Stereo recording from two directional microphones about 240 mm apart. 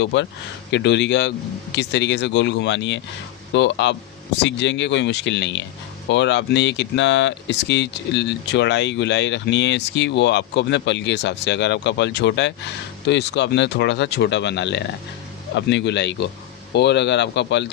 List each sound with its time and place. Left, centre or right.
0.0 s speech: left